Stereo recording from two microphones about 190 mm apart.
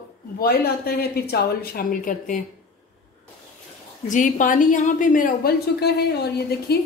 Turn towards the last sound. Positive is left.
turn(degrees=55)  # may be behind; listen again after turning